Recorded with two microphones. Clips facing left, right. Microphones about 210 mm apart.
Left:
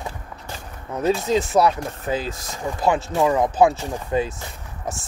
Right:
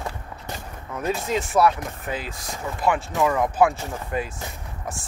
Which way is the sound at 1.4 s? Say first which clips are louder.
Left 2 dB; 20° left (ahead or behind).